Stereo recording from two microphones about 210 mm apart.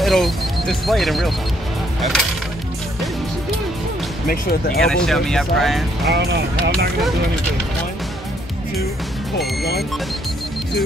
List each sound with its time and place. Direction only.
0.0 s speech: centre (ahead or behind)
4.3 s speech: 45° left (ahead or behind)
4.8 s speech: 5° left (ahead or behind)
6.0 s speech: 50° right (ahead or behind)
9.6 s speech: 50° left (ahead or behind)